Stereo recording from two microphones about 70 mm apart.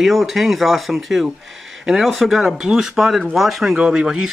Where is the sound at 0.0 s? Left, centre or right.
Centre.